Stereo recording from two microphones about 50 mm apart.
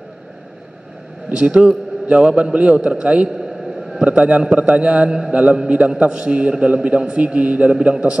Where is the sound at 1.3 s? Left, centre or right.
Right.